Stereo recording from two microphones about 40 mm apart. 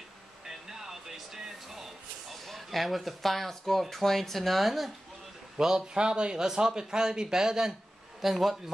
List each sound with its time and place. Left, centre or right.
0.5 s a sound: centre
2.3 s speech: centre
5.6 s speech: centre